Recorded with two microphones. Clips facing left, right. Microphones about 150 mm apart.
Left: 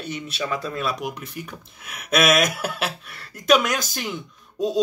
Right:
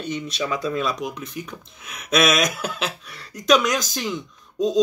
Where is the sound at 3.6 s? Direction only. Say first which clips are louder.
Right 2 dB; 60° left (ahead or behind).